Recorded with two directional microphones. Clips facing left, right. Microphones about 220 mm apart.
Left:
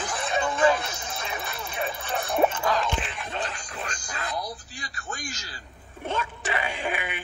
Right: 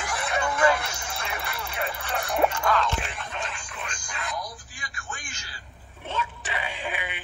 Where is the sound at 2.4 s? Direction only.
25° left (ahead or behind).